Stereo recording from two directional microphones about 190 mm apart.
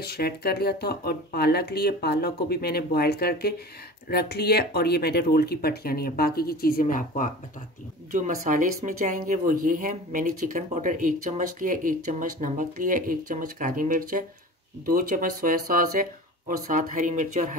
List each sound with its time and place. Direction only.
0.0 s speech: 55° left (ahead or behind)
8.1 s speech: 45° right (ahead or behind)